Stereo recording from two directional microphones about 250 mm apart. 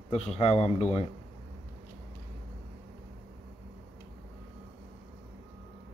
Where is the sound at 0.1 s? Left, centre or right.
Left.